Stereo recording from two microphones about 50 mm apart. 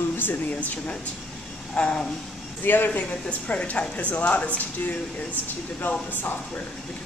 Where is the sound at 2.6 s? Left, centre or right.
Left.